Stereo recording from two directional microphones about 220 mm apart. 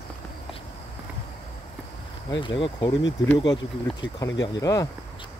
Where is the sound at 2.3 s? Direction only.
20° left (ahead or behind).